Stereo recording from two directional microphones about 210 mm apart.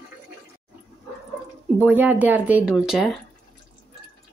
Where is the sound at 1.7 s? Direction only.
10° right (ahead or behind).